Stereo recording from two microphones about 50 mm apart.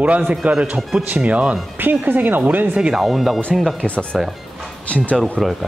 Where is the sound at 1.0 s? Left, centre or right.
Right.